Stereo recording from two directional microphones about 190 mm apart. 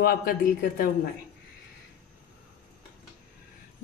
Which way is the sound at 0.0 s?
50° left (ahead or behind).